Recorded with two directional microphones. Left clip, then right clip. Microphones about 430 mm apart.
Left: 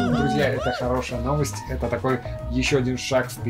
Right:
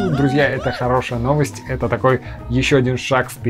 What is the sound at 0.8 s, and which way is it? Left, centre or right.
Speech, right.